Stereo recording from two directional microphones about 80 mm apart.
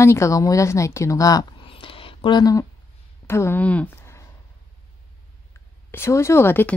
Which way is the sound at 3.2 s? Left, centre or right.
Left.